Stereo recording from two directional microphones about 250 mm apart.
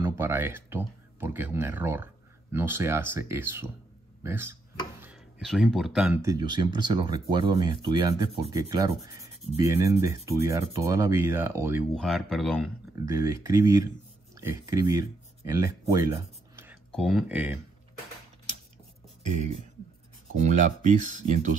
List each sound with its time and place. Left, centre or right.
0.0 s speech: centre
13.0 s speech: centre
16.9 s speech: centre
20.4 s speech: right